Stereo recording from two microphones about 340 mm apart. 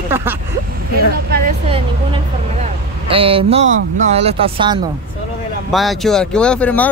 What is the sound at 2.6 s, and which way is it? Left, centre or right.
Speech, centre.